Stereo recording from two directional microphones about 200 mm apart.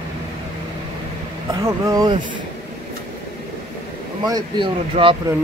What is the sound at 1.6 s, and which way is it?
Speech, 20° right (ahead or behind).